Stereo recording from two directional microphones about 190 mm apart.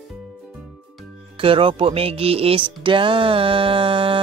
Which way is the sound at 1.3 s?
30° right (ahead or behind).